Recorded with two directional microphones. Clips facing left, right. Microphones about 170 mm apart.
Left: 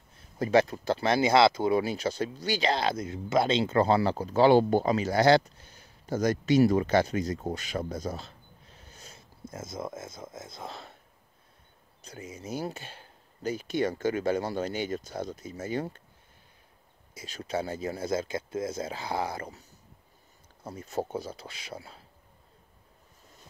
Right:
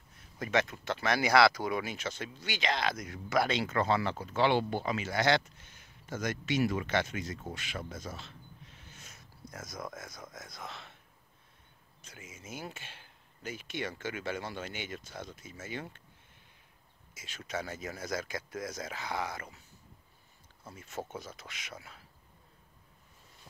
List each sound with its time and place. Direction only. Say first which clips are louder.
0.4 s speech: left 8 dB; 35° left (ahead or behind)
12.0 s speech: left 9 dB; 35° left (ahead or behind)
17.1 s speech: left 6 dB; 35° left (ahead or behind)
20.6 s speech: left 8 dB; 35° left (ahead or behind)